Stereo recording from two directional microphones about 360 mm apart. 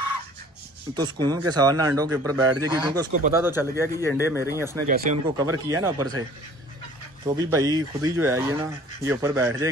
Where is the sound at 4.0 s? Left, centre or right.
Centre.